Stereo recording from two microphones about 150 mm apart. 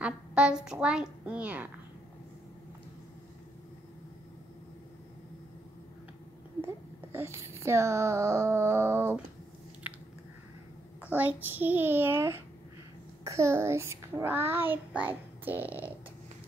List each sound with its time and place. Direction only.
0.0 s a child's voice: 5° right (ahead or behind)
6.6 s speech: 15° right (ahead or behind)
9.8 s chewing: 10° right (ahead or behind)
11.0 s a child's voice: 10° right (ahead or behind)